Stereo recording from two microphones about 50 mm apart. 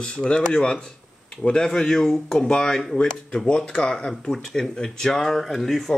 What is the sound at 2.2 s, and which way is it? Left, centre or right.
Speech, centre.